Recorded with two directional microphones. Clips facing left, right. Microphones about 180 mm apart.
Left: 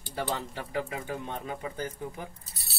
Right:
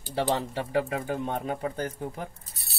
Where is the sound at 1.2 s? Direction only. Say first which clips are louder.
Right 6 dB; 50° right (ahead or behind).